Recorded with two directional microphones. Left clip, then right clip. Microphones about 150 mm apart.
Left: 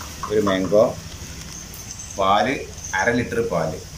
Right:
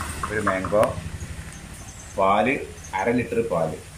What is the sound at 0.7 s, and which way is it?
Speech, 20° left (ahead or behind).